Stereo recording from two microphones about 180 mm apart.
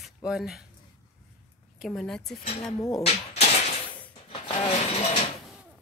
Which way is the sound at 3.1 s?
35° left (ahead or behind).